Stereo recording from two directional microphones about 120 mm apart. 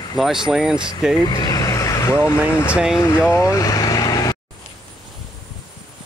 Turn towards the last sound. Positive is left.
turn(degrees=35)  # may be behind; listen again after turning